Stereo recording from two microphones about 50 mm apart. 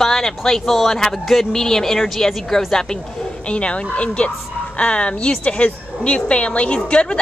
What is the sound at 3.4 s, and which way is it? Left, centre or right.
A woman's voice, left.